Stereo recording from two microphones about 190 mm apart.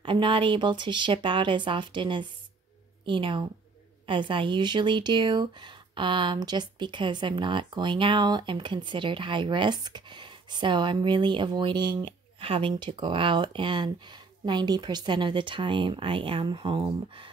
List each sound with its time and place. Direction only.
0.0 s speech: 25° right (ahead or behind)